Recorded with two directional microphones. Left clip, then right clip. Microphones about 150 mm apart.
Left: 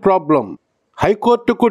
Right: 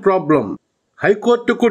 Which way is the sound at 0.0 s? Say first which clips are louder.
Left 1 dB; 40° left (ahead or behind).